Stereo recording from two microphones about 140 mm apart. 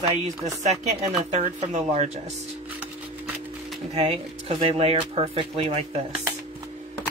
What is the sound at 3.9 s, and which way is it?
Speech, 45° right (ahead or behind).